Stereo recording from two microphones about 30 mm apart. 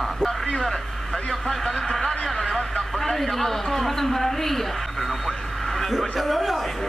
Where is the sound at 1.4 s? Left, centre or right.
Centre.